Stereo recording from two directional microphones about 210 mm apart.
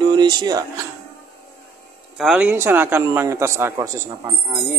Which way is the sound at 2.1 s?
5° right (ahead or behind).